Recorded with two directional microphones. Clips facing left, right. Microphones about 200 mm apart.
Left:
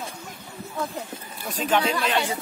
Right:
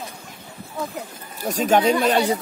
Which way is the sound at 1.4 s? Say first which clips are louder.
Right 6 dB; 45° right (ahead or behind).